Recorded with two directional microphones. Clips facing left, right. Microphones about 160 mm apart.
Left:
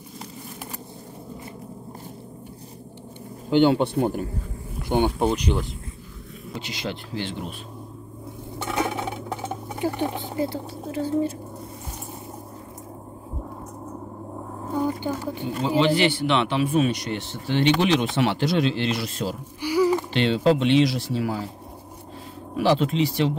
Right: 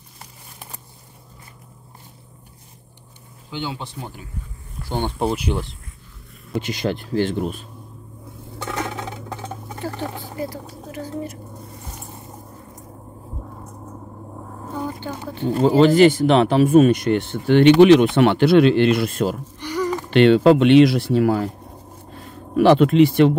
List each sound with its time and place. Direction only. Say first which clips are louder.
3.4 s speech: left 12 dB; 60° left (ahead or behind)
4.8 s speech: left 4 dB; 15° left (ahead or behind)
5.2 s speech: even; 5° right (ahead or behind)
6.5 s speech: right 8 dB; 50° right (ahead or behind)
8.7 s a sound: left 3 dB; 15° left (ahead or behind)
14.7 s a sound: left 4 dB; 10° left (ahead or behind)
15.4 s speech: right 7 dB; 45° right (ahead or behind)
19.6 s a sound: left 4 dB; 10° left (ahead or behind)
20.1 s speech: right 8 dB; 60° right (ahead or behind)